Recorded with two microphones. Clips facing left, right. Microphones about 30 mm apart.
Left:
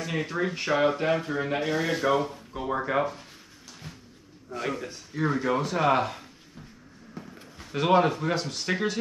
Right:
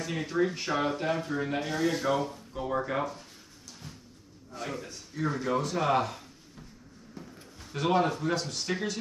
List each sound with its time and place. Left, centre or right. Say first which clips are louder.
0.0 s speech: even; centre
3.8 s a sound: left 3 dB; left
4.6 s speech: left 5 dB; left